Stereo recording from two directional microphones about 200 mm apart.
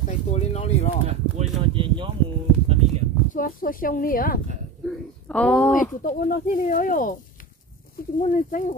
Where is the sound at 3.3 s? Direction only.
45° left (ahead or behind).